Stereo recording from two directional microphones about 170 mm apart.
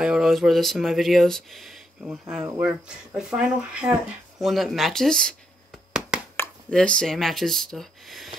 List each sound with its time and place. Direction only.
0.0 s speech: 5° right (ahead or behind)
2.2 s speech: 15° right (ahead or behind)
3.2 s speech: 5° right (ahead or behind)
5.9 s a sound: 5° right (ahead or behind)
6.3 s speech: 10° left (ahead or behind)